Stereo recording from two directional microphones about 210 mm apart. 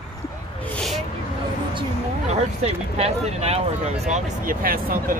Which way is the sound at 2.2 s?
30° right (ahead or behind).